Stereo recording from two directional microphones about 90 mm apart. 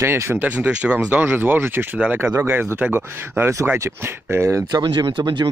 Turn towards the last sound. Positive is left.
turn(degrees=-60)  # may be behind; listen again after turning